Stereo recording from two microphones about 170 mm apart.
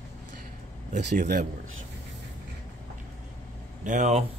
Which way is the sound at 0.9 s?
45° right (ahead or behind).